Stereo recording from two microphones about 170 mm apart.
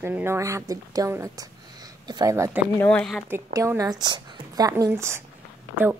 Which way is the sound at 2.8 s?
5° left (ahead or behind).